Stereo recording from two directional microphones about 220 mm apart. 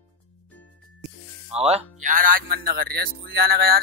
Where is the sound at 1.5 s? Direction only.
30° right (ahead or behind); by 3.6 s 45° right (ahead or behind).